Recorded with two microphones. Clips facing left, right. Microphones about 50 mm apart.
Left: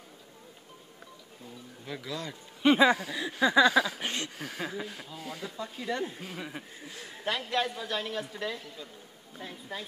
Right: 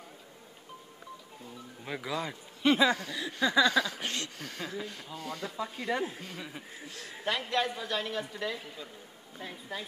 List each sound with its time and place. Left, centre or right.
1.9 s speech: centre
2.6 s speech: left
3.0 s a sound: centre
5.6 s speech: centre
7.2 s a woman's voice: centre